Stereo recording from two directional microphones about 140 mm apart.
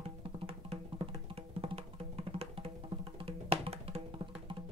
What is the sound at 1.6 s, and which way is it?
Music, 45° right (ahead or behind).